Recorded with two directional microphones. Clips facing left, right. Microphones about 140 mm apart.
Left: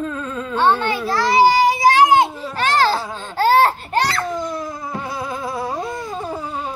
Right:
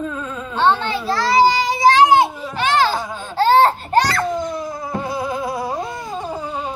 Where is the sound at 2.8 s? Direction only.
35° left (ahead or behind).